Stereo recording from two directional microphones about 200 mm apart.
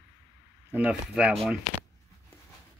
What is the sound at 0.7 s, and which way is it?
Speech, 5° right (ahead or behind).